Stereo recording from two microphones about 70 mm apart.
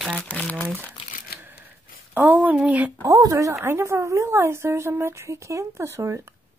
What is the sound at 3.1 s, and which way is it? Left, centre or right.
Speech, right.